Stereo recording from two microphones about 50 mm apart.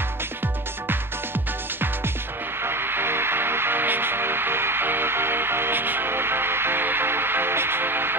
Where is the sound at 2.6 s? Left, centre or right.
Right.